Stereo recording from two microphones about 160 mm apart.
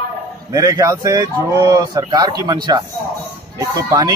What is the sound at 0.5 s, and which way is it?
Speech, 20° right (ahead or behind).